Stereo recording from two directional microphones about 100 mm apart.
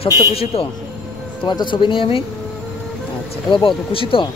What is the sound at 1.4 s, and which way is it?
Speech, 50° left (ahead or behind).